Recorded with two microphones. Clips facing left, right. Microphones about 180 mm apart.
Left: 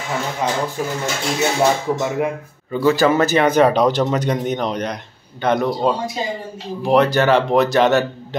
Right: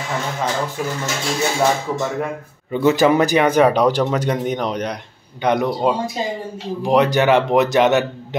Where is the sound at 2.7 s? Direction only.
20° right (ahead or behind).